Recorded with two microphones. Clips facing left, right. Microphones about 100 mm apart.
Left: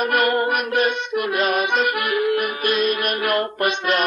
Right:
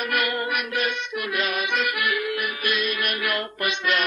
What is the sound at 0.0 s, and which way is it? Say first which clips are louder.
Music: left 7 dB; 40° left (ahead or behind).